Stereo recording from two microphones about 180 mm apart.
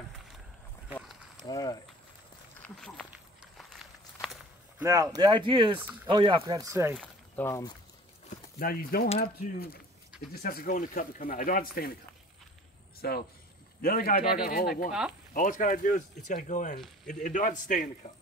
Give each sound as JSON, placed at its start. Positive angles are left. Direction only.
{"t": 1.5, "sound": "speech", "side_deg": 20}
{"t": 2.6, "sound": "speech", "side_deg": 5}
{"t": 4.2, "sound": "walk", "side_deg": -5}
{"t": 4.8, "sound": "speech", "side_deg": -20}
{"t": 7.0, "sound": "speech", "side_deg": 15}
{"t": 8.3, "sound": "speech", "side_deg": 55}
{"t": 13.0, "sound": "speech", "side_deg": 60}
{"t": 14.9, "sound": "speech", "side_deg": -5}
{"t": 15.3, "sound": "speech", "side_deg": 45}